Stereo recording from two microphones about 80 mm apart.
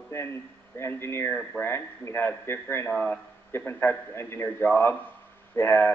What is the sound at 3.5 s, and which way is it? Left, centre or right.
A man's voice, left.